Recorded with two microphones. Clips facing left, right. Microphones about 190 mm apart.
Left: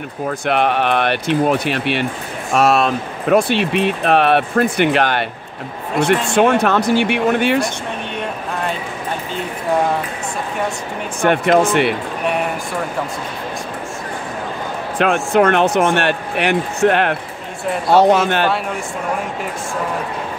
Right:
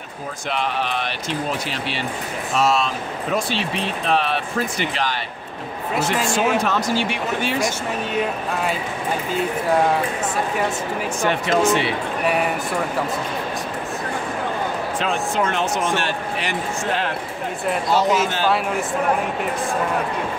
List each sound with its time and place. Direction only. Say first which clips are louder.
0.5 s speech: left 7 dB; 60° left (ahead or behind)
11.2 s speech: left 5 dB; 55° left (ahead or behind)
15.0 s speech: left 10 dB; 65° left (ahead or behind)